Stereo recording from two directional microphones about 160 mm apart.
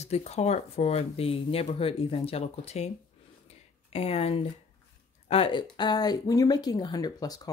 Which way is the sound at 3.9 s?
40° left (ahead or behind).